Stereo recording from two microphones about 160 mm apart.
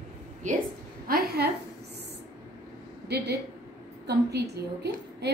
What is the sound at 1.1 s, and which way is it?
Speech, 75° right (ahead or behind).